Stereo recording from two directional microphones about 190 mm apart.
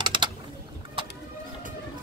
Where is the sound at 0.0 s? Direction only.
25° right (ahead or behind).